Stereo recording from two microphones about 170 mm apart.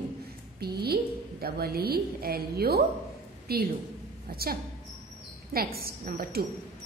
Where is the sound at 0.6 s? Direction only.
70° right (ahead or behind).